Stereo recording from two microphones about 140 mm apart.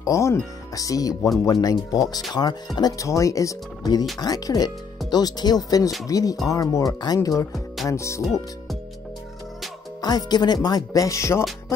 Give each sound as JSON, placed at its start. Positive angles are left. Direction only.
{"t": 0.0, "sound": "speech", "side_deg": 20}
{"t": 7.5, "sound": "music", "side_deg": 0}
{"t": 7.9, "sound": "speech", "side_deg": 20}
{"t": 10.0, "sound": "speech", "side_deg": 30}